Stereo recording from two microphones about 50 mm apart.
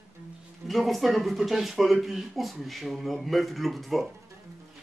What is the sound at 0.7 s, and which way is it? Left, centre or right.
Speech, centre.